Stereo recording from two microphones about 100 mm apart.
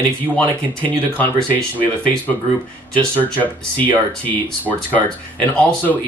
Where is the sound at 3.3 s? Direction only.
15° left (ahead or behind).